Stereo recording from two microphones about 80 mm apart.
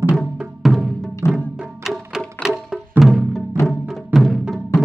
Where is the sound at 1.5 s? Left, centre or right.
Centre.